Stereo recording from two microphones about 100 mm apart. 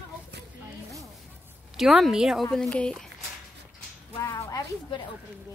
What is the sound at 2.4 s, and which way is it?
Speech, 10° left (ahead or behind).